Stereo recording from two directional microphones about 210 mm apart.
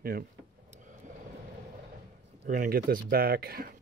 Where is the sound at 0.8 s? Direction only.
35° right (ahead or behind).